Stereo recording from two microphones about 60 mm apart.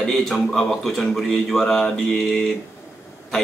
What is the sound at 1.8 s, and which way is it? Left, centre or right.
Speech, centre.